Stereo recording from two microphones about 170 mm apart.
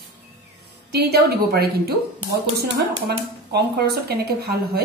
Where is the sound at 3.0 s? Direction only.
70° right (ahead or behind).